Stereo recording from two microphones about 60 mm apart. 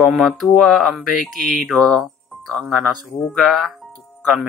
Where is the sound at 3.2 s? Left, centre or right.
Centre.